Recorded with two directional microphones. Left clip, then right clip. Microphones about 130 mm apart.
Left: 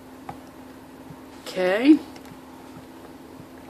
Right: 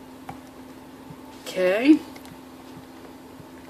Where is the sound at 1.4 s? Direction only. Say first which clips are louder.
Even; 15° left (ahead or behind).